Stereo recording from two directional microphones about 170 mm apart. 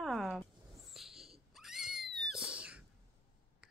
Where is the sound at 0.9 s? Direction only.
Centre (ahead or behind).